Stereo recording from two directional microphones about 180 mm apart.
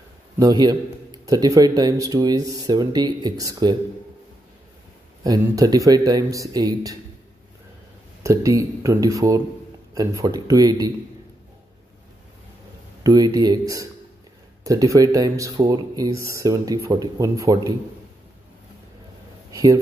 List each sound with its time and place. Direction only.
0.4 s speech: 25° right (ahead or behind)
5.2 s speech: 20° right (ahead or behind)
8.2 s speech: 15° right (ahead or behind)
13.0 s speech: 20° right (ahead or behind)
19.5 s speech: 20° right (ahead or behind)